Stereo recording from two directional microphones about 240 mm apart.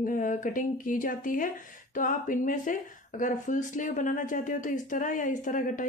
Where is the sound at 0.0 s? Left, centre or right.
Left.